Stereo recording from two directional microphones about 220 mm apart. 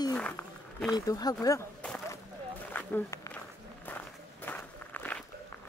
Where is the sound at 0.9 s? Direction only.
15° left (ahead or behind).